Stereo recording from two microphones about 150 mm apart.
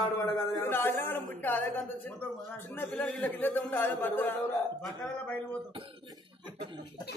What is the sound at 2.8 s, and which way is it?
Speech, 5° left (ahead or behind).